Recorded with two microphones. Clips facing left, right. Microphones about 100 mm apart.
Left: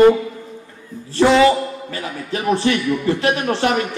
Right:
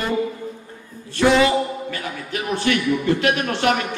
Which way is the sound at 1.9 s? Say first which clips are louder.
Left 2 dB; 30° left (ahead or behind).